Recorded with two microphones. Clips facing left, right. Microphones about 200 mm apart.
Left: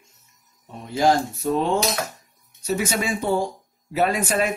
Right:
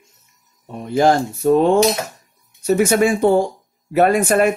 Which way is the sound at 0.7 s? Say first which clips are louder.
Right 5 dB; 60° right (ahead or behind).